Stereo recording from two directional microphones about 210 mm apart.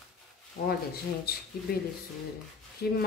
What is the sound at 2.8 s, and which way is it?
Speech, 50° left (ahead or behind).